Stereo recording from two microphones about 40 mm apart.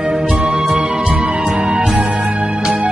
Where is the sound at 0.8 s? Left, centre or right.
Right.